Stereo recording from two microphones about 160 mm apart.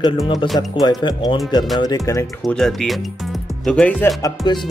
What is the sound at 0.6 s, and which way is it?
A man's voice, 25° left (ahead or behind).